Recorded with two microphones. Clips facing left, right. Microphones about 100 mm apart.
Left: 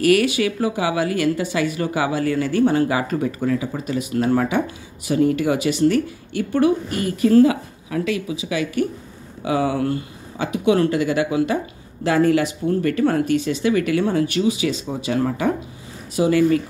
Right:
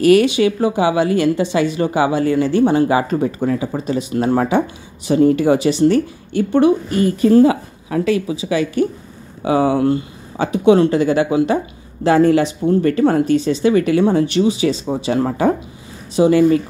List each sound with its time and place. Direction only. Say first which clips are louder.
0.0 s a woman's voice: right 5 dB; 25° right (ahead or behind)